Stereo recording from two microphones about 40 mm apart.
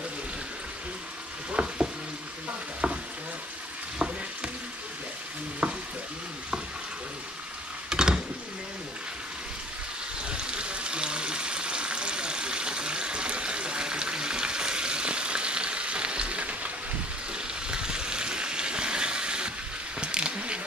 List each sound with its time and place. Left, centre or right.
1.5 s stir: right
4.0 s stir: right
5.6 s stir: right
7.9 s a sound: centre
10.3 s water: right
17.3 s a sound: right